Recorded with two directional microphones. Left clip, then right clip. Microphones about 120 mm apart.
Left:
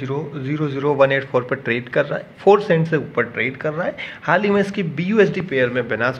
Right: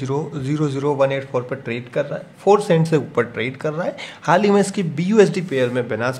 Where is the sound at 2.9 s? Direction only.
50° right (ahead or behind).